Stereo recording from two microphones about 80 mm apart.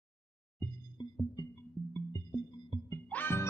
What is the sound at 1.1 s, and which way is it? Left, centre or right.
Music, left.